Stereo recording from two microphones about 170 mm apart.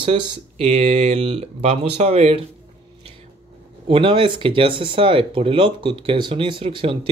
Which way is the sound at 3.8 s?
30° right (ahead or behind).